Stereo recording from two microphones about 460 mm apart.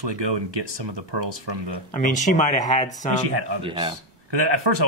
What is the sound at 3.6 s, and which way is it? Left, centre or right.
Speech, centre.